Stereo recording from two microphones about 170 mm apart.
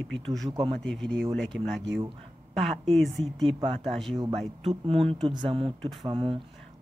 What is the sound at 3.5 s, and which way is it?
Speech, 30° right (ahead or behind).